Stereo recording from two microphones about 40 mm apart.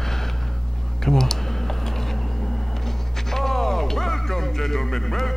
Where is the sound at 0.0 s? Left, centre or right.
Centre.